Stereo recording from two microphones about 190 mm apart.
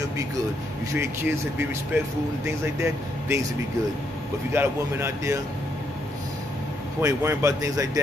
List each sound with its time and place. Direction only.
0.9 s speech: 10° right (ahead or behind)
4.5 s speech: 10° right (ahead or behind)
7.0 s speech: 15° right (ahead or behind)